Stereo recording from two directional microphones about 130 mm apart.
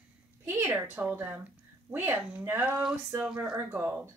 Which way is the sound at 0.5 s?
15° right (ahead or behind).